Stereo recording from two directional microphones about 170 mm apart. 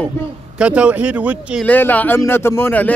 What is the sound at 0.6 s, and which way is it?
Speech, 5° right (ahead or behind).